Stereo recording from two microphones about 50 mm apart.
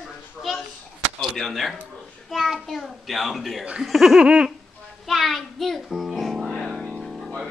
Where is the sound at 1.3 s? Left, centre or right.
Centre.